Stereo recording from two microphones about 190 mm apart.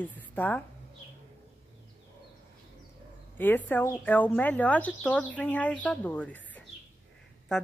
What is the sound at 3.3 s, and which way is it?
A woman's voice, 10° left (ahead or behind).